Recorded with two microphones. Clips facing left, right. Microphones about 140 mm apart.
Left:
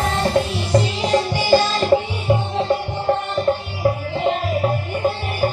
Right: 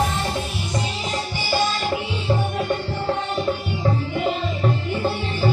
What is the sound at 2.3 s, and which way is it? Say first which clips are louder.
Music: left 4 dB; 25° left (ahead or behind).